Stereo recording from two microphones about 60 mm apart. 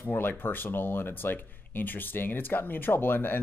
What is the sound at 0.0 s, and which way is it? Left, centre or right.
Speech, left.